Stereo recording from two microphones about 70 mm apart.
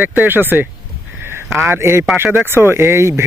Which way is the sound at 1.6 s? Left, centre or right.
Right.